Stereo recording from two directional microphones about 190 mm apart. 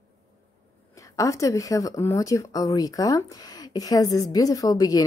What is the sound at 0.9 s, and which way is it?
A woman's voice, 15° left (ahead or behind).